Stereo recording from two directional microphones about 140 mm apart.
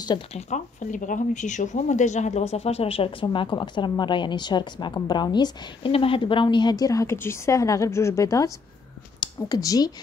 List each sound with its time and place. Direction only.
0.3 s a woman's voice: 60° left (ahead or behind); by 9.9 s 25° left (ahead or behind)